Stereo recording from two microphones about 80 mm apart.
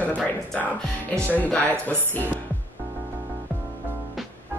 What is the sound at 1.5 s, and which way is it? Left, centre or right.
Speech, centre.